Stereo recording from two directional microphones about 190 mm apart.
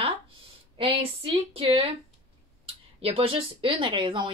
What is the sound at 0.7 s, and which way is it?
Speech, 30° right (ahead or behind).